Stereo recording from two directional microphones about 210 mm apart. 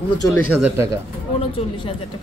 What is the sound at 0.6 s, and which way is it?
Speech, 15° right (ahead or behind).